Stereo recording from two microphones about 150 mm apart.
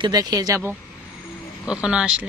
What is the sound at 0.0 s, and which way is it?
Speech, 25° right (ahead or behind).